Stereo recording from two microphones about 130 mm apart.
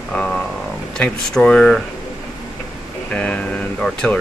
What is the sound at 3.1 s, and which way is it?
Speech, 10° left (ahead or behind).